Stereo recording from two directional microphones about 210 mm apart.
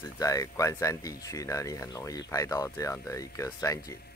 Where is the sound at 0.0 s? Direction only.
15° left (ahead or behind).